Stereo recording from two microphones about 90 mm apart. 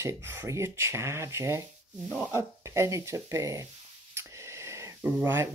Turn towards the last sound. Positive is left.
turn(degrees=-25)  # may be behind; listen again after turning